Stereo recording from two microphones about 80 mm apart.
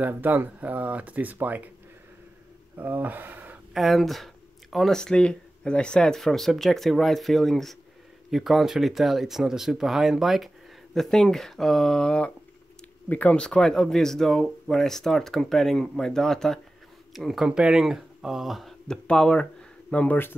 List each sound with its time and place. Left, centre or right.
0.0 s speech: right
2.8 s speech: right
3.7 s speech: centre; by 20.3 s left